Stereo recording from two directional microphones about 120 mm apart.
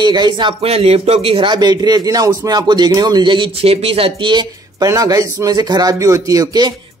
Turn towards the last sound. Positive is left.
turn(degrees=-30)  # may be behind; listen again after turning